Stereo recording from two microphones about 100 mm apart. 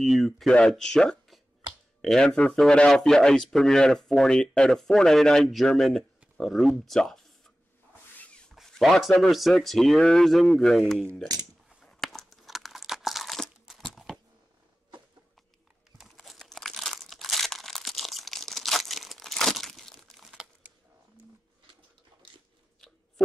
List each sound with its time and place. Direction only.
0.0 s speech: centre (ahead or behind)
6.9 s a sound: 5° left (ahead or behind)
8.5 s speech: centre (ahead or behind)
11.8 s crunch: 5° left (ahead or behind)
16.0 s crumpling: centre (ahead or behind)
20.6 s camera: 20° right (ahead or behind)